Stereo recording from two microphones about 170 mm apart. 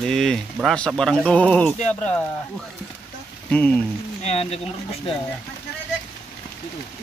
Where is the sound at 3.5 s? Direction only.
10° left (ahead or behind).